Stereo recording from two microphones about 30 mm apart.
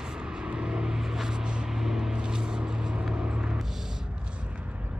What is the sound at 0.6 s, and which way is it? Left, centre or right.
Vehicle, right.